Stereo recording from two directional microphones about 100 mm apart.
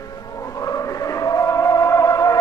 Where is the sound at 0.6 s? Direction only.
35° left (ahead or behind).